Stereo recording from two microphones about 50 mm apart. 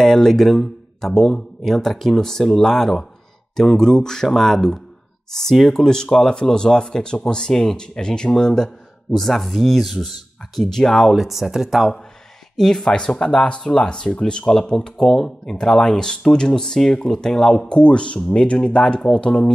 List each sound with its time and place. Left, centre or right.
0.0 s speech: centre
12.5 s speech: centre